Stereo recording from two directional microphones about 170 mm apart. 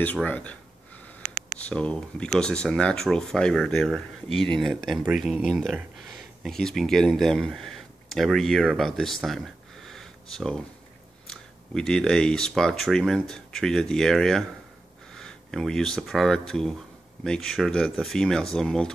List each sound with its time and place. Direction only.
0.0 s speech: 10° left (ahead or behind)
1.2 s a sound: 50° right (ahead or behind)
1.6 s speech: 5° left (ahead or behind)